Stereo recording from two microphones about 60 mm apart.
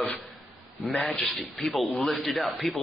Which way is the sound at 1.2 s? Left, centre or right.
Centre.